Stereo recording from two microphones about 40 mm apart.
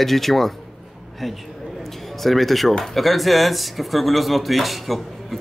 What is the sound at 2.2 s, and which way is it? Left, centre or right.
A man's voice, centre.